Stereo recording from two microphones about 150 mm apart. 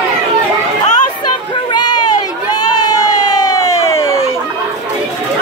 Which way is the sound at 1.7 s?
30° left (ahead or behind).